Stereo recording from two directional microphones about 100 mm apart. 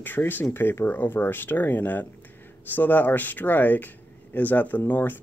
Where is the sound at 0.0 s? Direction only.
20° left (ahead or behind).